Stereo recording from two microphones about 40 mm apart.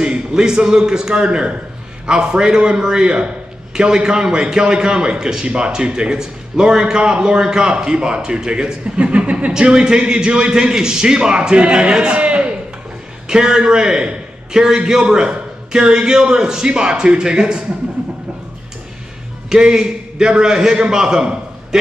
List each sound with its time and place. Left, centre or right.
0.0 s a man's voice: right
9.5 s a man's voice: centre
12.2 s a sound: right
13.3 s a man's voice: centre
19.5 s a man's voice: centre